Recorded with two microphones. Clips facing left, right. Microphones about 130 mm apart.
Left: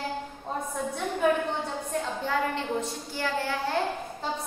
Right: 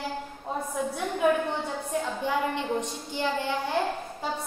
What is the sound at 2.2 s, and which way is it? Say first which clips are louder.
A woman's voice: even; 15° right (ahead or behind).